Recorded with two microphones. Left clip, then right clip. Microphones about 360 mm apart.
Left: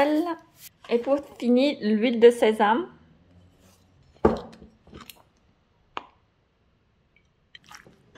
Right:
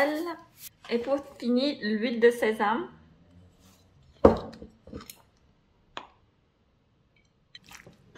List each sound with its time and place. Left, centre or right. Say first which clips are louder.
0.0 s a woman's voice: left 4 dB; left
4.5 s a sound: right 4 dB; centre
7.5 s squish: left 2 dB; centre